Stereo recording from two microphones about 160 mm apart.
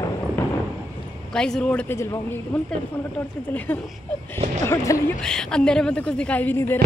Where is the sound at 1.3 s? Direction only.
5° left (ahead or behind).